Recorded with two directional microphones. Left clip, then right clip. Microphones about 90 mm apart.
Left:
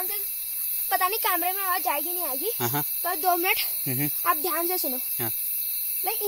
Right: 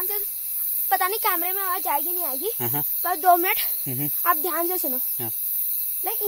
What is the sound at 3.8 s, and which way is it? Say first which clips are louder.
Speech: left 2 dB; 10° left (ahead or behind).